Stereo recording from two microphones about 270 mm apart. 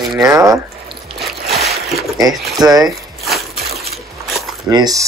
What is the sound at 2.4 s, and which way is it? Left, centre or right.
Speech, centre.